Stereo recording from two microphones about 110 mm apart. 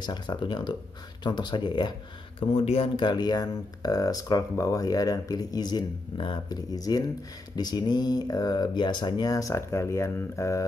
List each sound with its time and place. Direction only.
0.0 s speech: 40° left (ahead or behind)
2.5 s speech: 65° left (ahead or behind)
3.0 s speech: 40° left (ahead or behind)